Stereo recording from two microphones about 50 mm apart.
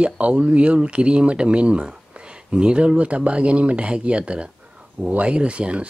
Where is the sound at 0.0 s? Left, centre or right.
Right.